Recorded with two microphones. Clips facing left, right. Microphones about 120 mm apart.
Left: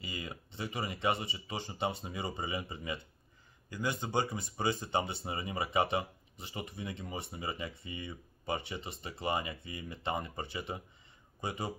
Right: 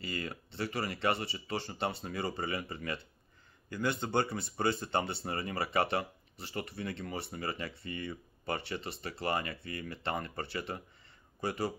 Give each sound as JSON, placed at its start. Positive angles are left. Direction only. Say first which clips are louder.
{"t": 0.0, "sound": "speech", "louder": "right 4 dB", "side_deg": 15}